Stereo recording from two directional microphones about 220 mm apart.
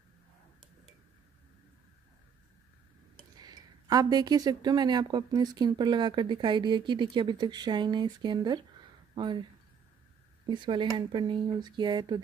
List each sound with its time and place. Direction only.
3.3 s speech: 20° right (ahead or behind)
10.5 s speech: 20° right (ahead or behind)